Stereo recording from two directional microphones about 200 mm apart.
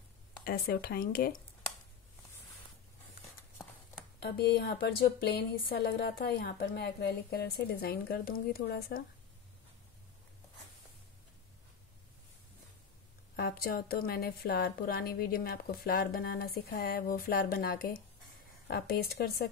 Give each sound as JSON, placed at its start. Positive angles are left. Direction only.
{"t": 0.4, "sound": "speech", "side_deg": 50}
{"t": 4.2, "sound": "speech", "side_deg": 50}
{"t": 13.4, "sound": "speech", "side_deg": 50}